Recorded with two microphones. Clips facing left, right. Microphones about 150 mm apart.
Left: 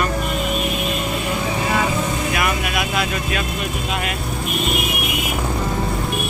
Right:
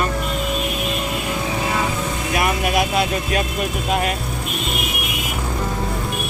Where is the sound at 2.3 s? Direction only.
35° right (ahead or behind).